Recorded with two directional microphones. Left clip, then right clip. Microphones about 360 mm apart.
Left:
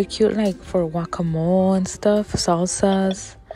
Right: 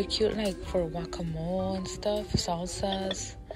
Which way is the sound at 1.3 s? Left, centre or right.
Left.